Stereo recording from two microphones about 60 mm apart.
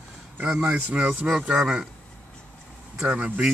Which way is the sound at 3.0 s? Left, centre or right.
Right.